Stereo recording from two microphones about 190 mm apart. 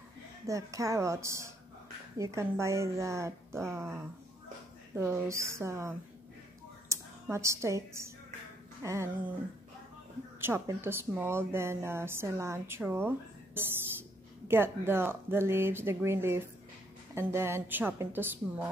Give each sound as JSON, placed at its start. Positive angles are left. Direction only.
{"t": 0.5, "sound": "speech", "side_deg": -15}
{"t": 10.4, "sound": "speech", "side_deg": -10}
{"t": 14.5, "sound": "speech", "side_deg": -10}